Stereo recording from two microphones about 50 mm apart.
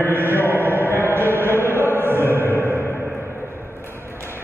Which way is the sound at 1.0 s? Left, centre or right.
Right.